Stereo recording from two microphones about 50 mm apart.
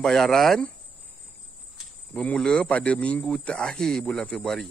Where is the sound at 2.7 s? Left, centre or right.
Left.